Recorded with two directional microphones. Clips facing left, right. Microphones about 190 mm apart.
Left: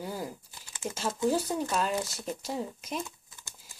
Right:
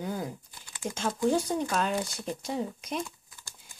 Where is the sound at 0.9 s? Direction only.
5° left (ahead or behind).